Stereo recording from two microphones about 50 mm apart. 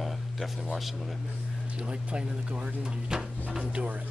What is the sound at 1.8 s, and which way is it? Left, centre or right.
Speech, right.